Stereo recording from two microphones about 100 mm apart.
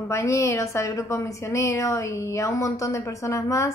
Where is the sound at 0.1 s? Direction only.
30° left (ahead or behind).